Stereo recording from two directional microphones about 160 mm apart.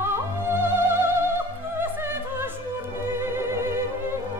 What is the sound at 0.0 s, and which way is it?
Music, 15° right (ahead or behind).